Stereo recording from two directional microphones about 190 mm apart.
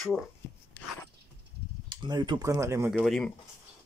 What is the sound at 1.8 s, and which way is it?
Speech, 25° right (ahead or behind).